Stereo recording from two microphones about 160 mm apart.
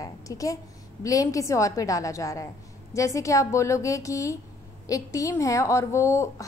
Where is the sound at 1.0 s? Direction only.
20° left (ahead or behind).